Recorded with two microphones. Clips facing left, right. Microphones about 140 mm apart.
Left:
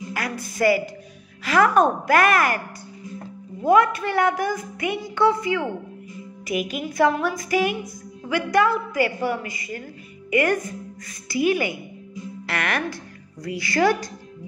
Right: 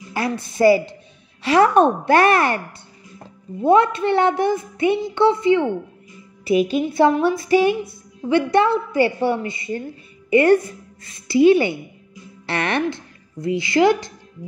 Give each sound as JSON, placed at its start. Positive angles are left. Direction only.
{"t": 0.1, "sound": "a woman's voice", "side_deg": -25}
{"t": 3.6, "sound": "a woman's voice", "side_deg": -25}